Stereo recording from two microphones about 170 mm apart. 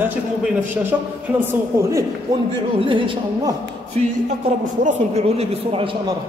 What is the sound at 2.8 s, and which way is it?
A woman's voice, 30° right (ahead or behind).